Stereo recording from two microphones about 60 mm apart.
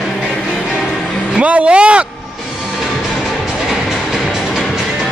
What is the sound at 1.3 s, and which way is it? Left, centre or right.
Vehicle, right.